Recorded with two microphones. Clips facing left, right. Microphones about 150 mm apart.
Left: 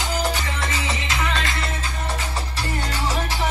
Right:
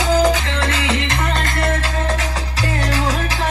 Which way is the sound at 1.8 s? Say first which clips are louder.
Right 7 dB; 90° right.